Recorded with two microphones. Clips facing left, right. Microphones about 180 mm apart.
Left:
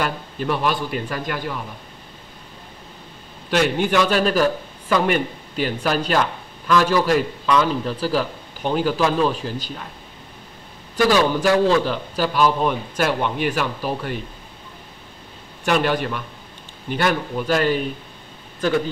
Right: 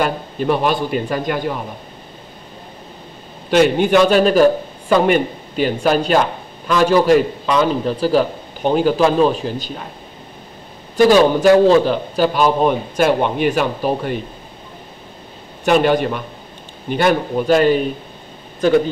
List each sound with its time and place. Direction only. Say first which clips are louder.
0.0 s a man's voice: right 5 dB; 25° right (ahead or behind)
3.4 s a man's voice: right 6 dB; 20° right (ahead or behind)
11.0 s a man's voice: right 6 dB; 25° right (ahead or behind)
15.6 s a man's voice: right 6 dB; 20° right (ahead or behind)